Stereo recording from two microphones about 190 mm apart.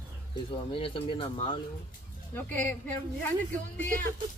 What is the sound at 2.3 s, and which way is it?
Speech, 10° left (ahead or behind).